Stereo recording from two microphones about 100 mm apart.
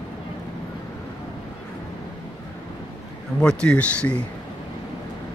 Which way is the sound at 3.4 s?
10° left (ahead or behind).